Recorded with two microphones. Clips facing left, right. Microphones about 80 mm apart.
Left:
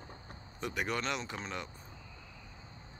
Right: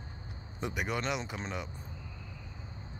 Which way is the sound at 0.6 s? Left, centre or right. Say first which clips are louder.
Right 1 dB; centre.